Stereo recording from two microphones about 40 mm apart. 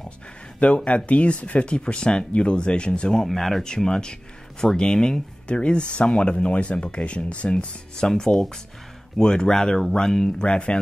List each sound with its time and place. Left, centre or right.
0.6 s speech: left; by 3.3 s centre
3.3 s speech: centre
3.6 s speech: centre
5.5 s speech: left